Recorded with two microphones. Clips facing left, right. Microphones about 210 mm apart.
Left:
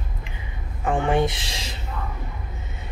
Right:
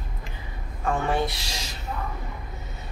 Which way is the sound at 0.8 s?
15° left (ahead or behind).